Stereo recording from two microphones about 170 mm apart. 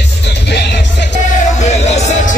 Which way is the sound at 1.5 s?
40° left (ahead or behind).